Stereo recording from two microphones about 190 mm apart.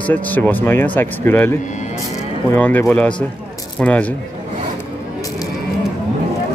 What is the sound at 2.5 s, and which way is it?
Speech, 10° left (ahead or behind).